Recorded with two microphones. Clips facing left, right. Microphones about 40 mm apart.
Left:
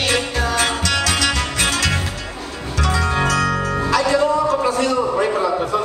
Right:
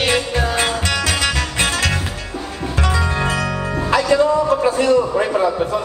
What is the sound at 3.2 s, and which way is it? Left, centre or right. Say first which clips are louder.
Music: left 2 dB; centre.